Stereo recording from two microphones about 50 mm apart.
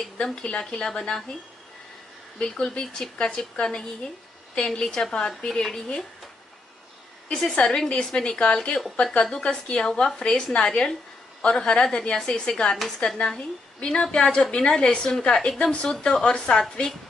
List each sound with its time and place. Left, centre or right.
0.0 s a woman's voice: centre
2.3 s a woman's voice: centre
7.5 s a woman's voice: centre
12.7 s a woman's voice: centre
13.7 s a woman's voice: centre